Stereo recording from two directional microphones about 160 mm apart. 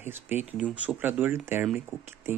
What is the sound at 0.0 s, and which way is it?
Speech, 15° right (ahead or behind).